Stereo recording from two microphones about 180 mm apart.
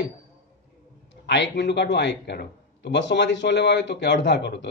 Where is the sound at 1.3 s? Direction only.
75° left (ahead or behind).